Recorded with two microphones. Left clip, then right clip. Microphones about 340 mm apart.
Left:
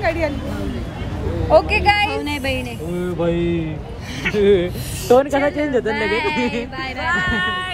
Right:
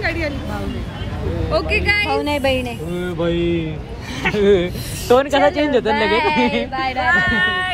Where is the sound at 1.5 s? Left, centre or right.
Left.